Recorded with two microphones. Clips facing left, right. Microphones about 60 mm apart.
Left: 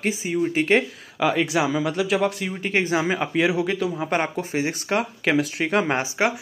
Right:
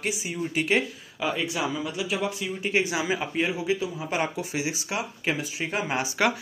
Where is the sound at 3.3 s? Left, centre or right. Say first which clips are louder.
Left 6 dB; left.